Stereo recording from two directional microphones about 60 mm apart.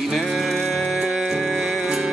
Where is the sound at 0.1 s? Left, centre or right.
Centre.